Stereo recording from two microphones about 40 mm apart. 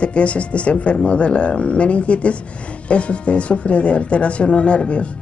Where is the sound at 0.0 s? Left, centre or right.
Left.